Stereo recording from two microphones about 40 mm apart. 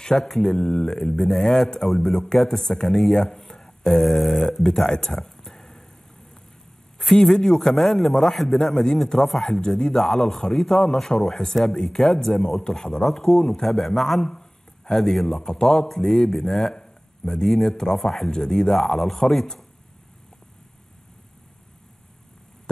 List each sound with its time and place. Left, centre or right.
0.0 s a man's voice: centre
7.0 s a man's voice: centre
10.0 s a man's voice: centre